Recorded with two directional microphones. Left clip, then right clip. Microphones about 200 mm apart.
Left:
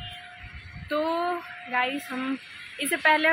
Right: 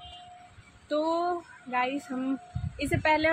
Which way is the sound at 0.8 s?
Centre (ahead or behind).